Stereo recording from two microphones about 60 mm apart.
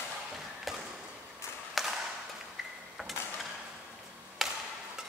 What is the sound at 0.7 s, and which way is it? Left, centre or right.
Chop, centre.